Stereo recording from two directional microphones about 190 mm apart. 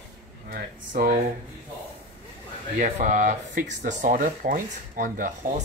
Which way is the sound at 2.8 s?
45° right (ahead or behind).